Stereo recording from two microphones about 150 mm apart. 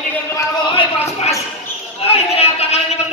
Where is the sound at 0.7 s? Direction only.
40° left (ahead or behind).